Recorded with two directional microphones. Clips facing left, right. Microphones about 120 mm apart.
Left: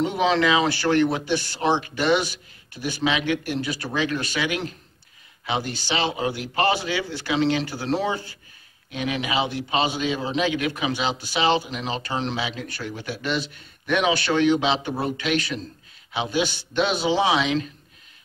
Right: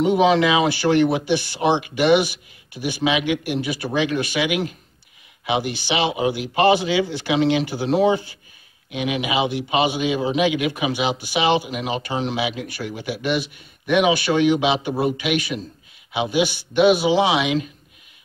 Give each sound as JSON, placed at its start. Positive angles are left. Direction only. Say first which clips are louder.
{"t": 0.0, "sound": "a man's voice", "louder": "right 5 dB", "side_deg": -15}